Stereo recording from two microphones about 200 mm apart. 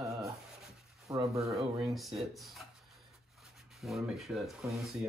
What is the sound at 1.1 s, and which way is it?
Speech, 20° right (ahead or behind).